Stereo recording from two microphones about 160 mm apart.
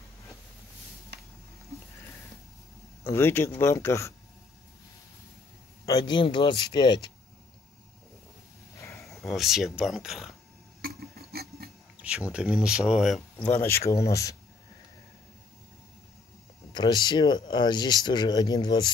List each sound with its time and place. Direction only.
3.0 s speech: 15° left (ahead or behind)
5.9 s speech: 25° left (ahead or behind)
9.0 s speech: centre (ahead or behind)
10.8 s filing: 75° right (ahead or behind)
12.3 s speech: 5° right (ahead or behind)
13.5 s speech: 15° left (ahead or behind)
16.7 s speech: 25° left (ahead or behind)